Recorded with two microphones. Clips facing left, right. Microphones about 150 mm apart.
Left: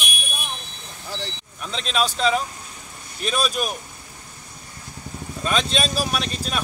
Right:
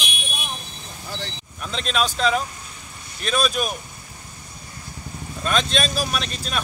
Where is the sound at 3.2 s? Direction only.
5° left (ahead or behind).